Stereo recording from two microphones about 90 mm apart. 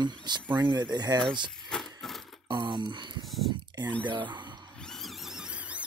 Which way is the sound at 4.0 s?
60° right (ahead or behind).